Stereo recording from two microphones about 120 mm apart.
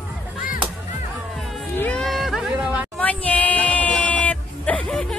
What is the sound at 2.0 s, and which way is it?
Music, centre (ahead or behind).